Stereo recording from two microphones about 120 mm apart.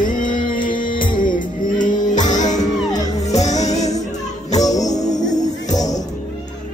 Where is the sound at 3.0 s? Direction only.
70° left (ahead or behind).